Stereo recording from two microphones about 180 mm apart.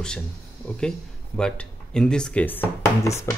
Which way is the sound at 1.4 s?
5° left (ahead or behind).